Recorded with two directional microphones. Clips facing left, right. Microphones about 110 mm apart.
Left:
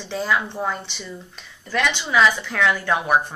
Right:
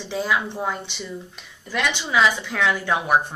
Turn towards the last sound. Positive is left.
turn(degrees=-15)  # may be behind; listen again after turning